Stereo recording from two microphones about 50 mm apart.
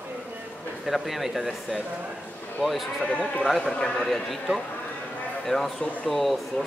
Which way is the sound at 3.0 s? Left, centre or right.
Left.